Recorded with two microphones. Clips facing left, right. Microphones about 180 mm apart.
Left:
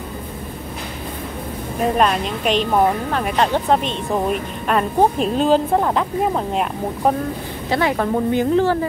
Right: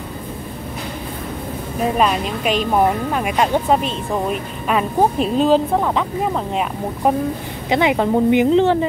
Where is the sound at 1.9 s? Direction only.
Centre (ahead or behind).